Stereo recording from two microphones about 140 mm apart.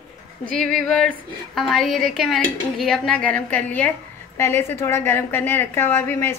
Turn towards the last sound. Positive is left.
turn(degrees=15)  # may be behind; listen again after turning